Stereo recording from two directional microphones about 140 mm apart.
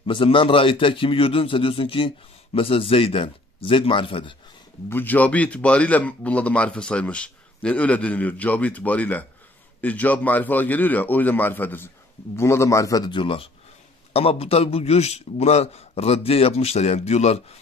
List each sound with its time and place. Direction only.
0.0 s a man's voice: 40° left (ahead or behind)
4.8 s a man's voice: 15° left (ahead or behind); by 17.6 s 50° left (ahead or behind)